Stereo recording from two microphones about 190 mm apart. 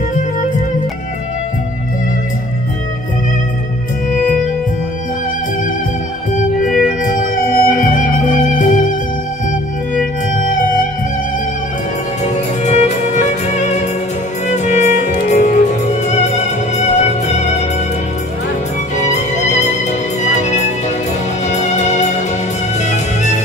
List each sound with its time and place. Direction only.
4.1 s music: 45° left (ahead or behind)
6.6 s music: 45° left (ahead or behind)
12.6 s music: 35° left (ahead or behind)
18.9 s music: 40° left (ahead or behind)